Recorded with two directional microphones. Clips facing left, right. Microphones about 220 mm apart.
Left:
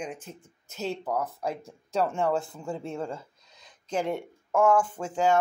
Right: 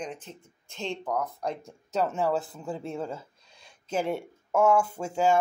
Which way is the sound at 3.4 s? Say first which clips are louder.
Even; 30° right (ahead or behind).